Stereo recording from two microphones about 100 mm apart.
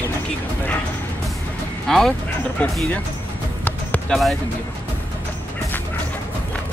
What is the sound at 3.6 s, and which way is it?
Music, 15° left (ahead or behind).